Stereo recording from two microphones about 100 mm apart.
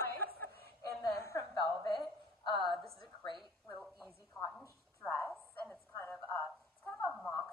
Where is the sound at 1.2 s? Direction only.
30° left (ahead or behind).